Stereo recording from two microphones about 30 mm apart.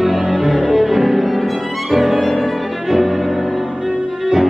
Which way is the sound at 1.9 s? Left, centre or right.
Centre.